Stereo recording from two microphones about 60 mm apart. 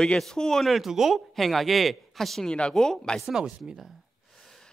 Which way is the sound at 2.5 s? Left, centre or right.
Centre.